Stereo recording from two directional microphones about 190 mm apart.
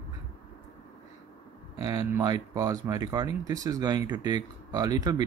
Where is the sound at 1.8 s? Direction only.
20° right (ahead or behind).